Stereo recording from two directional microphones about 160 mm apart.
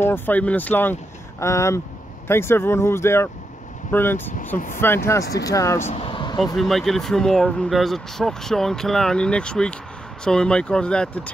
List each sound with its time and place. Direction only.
0.0 s speech: 10° left (ahead or behind)
5.9 s speech: 35° left (ahead or behind)
6.4 s speech: centre (ahead or behind)